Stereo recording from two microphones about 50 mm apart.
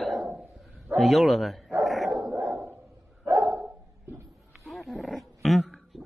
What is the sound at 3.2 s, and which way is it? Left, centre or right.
Dog, right.